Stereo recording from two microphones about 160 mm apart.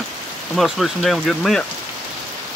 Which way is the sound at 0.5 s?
Centre (ahead or behind).